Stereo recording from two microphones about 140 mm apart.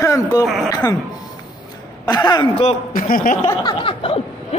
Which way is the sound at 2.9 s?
90° left.